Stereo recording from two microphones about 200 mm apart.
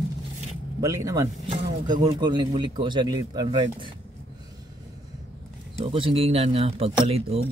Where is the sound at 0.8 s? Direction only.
15° right (ahead or behind).